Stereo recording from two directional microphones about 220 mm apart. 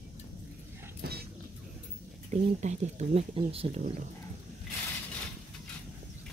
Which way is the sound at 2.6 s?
30° right (ahead or behind).